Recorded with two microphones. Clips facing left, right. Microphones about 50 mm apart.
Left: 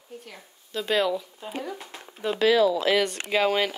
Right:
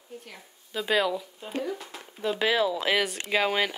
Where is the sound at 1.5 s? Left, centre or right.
Centre.